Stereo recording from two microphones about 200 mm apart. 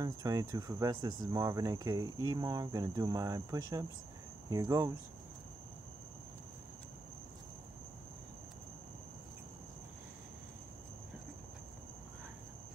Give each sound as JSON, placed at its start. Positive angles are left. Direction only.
{"t": 0.0, "sound": "speech", "side_deg": -20}